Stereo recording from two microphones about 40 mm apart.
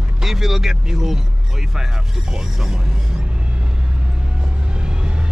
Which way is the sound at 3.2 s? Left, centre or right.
Right.